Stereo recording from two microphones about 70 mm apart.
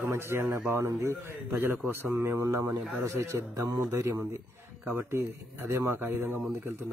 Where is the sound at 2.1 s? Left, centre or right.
Right.